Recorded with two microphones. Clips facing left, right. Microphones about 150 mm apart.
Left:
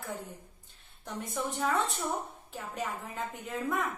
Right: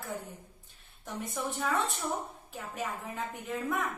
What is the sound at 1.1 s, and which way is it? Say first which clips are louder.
A woman's voice: left 1 dB; centre (ahead or behind).